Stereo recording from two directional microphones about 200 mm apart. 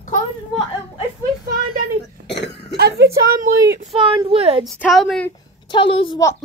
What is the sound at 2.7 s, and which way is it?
Speech, 55° right (ahead or behind).